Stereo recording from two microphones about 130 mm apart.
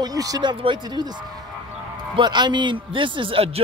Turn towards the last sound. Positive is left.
turn(degrees=-45)  # may be behind; listen again after turning